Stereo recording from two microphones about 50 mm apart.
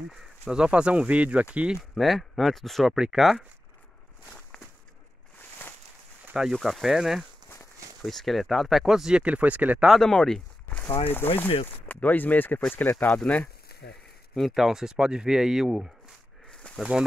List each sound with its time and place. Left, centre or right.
0.1 s speech: centre
2.0 s speech: centre
6.5 s speech: centre
8.0 s speech: centre
9.1 s speech: right
10.0 s speech: centre
10.8 s speech: left
14.3 s speech: centre
16.6 s snake: left